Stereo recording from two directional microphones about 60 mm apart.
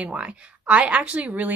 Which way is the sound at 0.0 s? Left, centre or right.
Centre.